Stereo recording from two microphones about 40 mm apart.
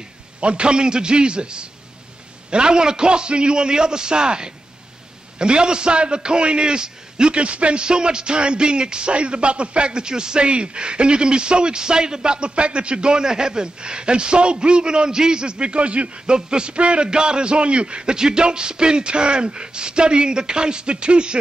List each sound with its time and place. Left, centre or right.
0.4 s a man's voice: right